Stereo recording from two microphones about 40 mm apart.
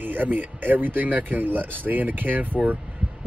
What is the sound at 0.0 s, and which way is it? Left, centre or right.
Speech, right.